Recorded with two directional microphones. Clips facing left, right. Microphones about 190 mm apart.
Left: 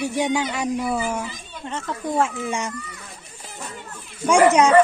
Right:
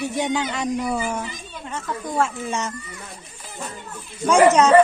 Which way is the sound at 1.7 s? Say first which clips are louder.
Left 2 dB; 20° left (ahead or behind).